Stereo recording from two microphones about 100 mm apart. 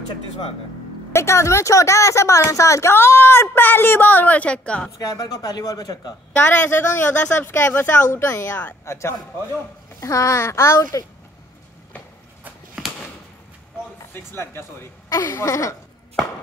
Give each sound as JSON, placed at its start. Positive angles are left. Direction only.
{"t": 1.1, "sound": "a woman's voice", "side_deg": 30}
{"t": 4.9, "sound": "a woman's voice", "side_deg": 40}
{"t": 6.3, "sound": "a man's voice", "side_deg": 20}
{"t": 12.8, "sound": "a sound", "side_deg": -5}
{"t": 14.1, "sound": "speech", "side_deg": 25}